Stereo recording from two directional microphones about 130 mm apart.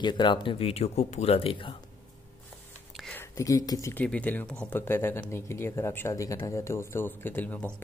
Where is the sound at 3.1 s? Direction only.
25° left (ahead or behind).